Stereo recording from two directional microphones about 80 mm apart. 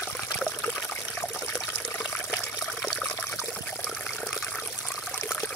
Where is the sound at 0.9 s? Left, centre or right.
Left.